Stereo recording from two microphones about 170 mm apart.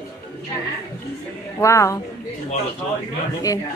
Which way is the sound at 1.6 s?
20° left (ahead or behind).